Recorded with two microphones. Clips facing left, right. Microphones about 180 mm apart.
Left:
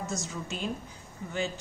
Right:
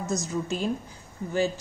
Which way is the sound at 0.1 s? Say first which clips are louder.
Right 7 dB; 40° right (ahead or behind).